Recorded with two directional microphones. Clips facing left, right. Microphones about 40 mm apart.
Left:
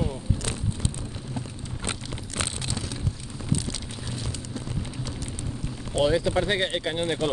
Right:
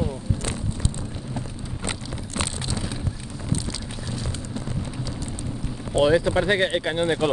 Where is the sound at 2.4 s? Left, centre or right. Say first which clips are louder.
Right 2 dB; right.